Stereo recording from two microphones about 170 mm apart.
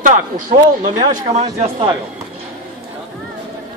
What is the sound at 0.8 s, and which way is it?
Speech, 30° right (ahead or behind).